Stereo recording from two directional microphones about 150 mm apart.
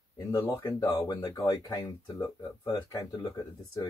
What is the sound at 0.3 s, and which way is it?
Speech, 20° left (ahead or behind).